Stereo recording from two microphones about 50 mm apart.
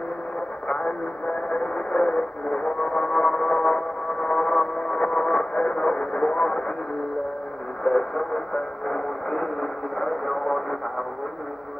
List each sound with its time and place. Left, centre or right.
0.7 s radio: left
7.8 s radio: centre